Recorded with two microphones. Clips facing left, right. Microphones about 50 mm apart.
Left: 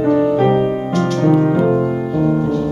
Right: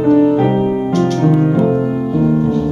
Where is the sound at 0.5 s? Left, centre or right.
Centre.